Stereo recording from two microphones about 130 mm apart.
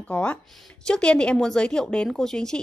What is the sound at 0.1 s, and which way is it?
A woman's voice, 10° left (ahead or behind).